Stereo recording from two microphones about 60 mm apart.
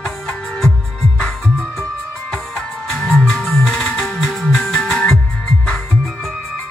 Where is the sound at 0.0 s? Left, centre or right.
Centre.